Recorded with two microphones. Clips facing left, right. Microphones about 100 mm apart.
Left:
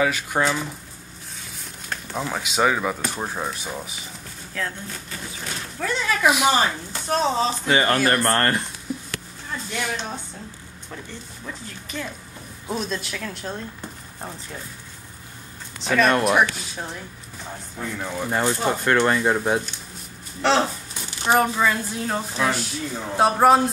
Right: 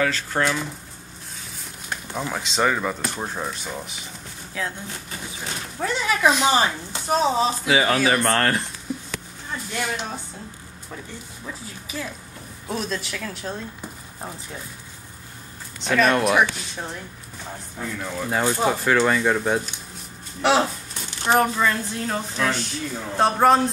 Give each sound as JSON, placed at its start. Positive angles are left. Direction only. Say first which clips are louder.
{"t": 0.0, "sound": "speech", "louder": "left 1 dB", "side_deg": 15}
{"t": 2.1, "sound": "speech", "louder": "left 1 dB", "side_deg": 5}
{"t": 4.6, "sound": "speech", "louder": "even", "side_deg": -15}
{"t": 6.2, "sound": "speech", "louder": "even", "side_deg": 10}
{"t": 6.5, "sound": "speech", "louder": "right 1 dB", "side_deg": -15}
{"t": 8.9, "sound": "a sound", "louder": "even", "side_deg": 0}
{"t": 9.8, "sound": "speech", "louder": "right 1 dB", "side_deg": -5}
{"t": 11.4, "sound": "speech", "louder": "even", "side_deg": -5}
{"t": 15.8, "sound": "speech", "louder": "even", "side_deg": 0}
{"t": 18.0, "sound": "speech", "louder": "left 1 dB", "side_deg": 10}
{"t": 18.3, "sound": "speech", "louder": "right 1 dB", "side_deg": -10}
{"t": 18.8, "sound": "speech", "louder": "even", "side_deg": 0}
{"t": 20.4, "sound": "speech", "louder": "right 1 dB", "side_deg": -15}
{"t": 21.2, "sound": "speech", "louder": "even", "side_deg": 5}